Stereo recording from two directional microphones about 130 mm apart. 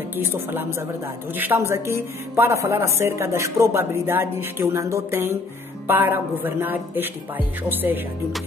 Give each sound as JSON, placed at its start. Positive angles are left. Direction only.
{"t": 0.2, "sound": "speech", "side_deg": -20}